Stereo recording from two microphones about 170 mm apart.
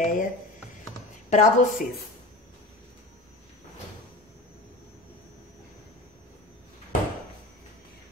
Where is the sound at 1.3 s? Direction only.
45° left (ahead or behind).